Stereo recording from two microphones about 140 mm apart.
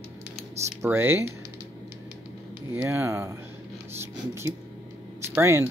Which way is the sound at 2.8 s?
20° right (ahead or behind).